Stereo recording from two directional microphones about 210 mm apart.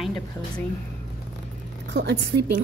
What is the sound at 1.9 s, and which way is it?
Speech, 55° right (ahead or behind).